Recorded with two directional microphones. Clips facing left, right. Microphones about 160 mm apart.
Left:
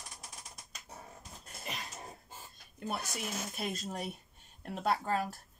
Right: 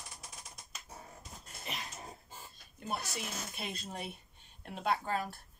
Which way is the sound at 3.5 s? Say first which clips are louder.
Left 4 dB; 45° left (ahead or behind).